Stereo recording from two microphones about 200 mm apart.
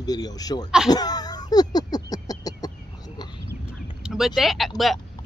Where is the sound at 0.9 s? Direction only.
20° left (ahead or behind).